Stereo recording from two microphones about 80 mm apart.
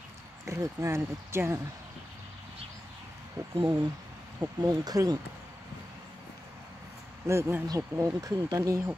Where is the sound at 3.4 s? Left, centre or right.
Right.